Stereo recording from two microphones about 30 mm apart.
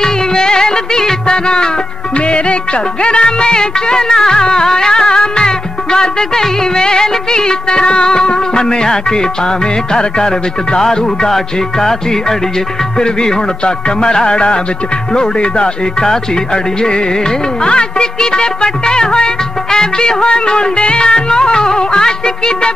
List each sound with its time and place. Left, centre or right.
0.0 s music: left
3.0 s music: left
9.9 s music: left
13.0 s music: left
17.6 s music: left